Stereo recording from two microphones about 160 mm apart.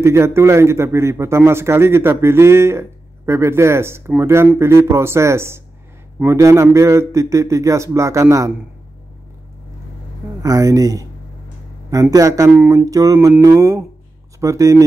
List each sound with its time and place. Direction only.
0.0 s a man's voice: 15° right (ahead or behind)
10.4 s a man's voice: 20° right (ahead or behind)